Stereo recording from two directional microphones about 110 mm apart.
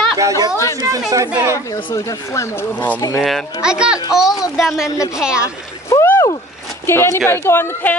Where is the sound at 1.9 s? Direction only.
30° left (ahead or behind).